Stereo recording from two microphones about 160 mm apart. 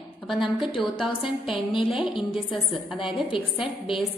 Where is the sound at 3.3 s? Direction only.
35° left (ahead or behind).